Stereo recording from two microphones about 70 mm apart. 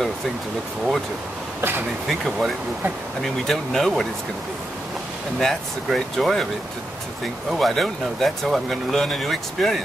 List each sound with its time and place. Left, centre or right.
1.6 s speech: right
2.0 s speech: centre
5.4 s speech: centre
7.5 s speech: centre